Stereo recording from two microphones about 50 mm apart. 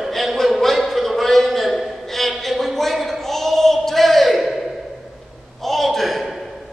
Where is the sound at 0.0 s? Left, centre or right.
Centre.